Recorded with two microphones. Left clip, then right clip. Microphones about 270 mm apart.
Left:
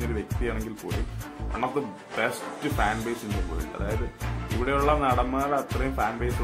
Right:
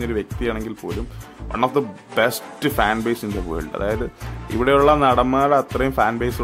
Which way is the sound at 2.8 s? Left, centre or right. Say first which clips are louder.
Right 8 dB; right.